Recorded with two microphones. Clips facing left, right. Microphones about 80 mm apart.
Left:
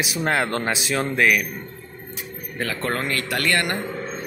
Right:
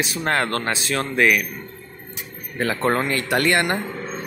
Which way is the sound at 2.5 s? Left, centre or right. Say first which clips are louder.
Right 5 dB; right.